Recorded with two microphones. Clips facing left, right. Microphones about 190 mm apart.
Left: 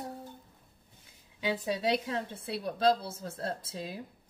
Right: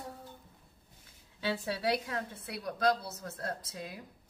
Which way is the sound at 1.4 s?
15° left (ahead or behind).